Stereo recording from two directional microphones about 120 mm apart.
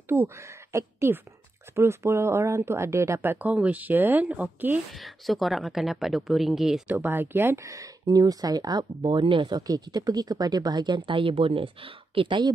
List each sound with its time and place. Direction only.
0.1 s speech: 20° right (ahead or behind)
4.9 s speech: centre (ahead or behind)
6.9 s speech: 15° right (ahead or behind); by 12.5 s 40° right (ahead or behind)